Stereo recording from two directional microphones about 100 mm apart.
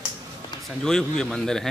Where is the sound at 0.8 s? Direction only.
5° left (ahead or behind).